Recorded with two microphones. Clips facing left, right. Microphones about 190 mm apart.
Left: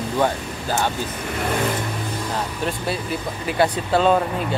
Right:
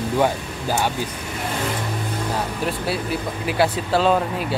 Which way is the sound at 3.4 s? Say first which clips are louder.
Left 1 dB; 5° right (ahead or behind).